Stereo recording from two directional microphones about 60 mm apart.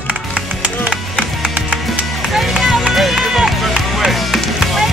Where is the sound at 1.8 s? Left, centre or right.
Centre.